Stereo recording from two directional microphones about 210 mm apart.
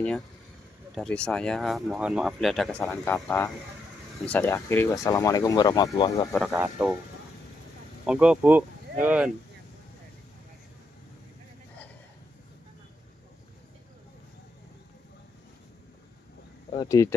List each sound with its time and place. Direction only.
0.9 s speech: 5° left (ahead or behind)
6.5 s speech: 10° right (ahead or behind)
8.1 s speech: 5° right (ahead or behind)
16.7 s speech: 15° left (ahead or behind)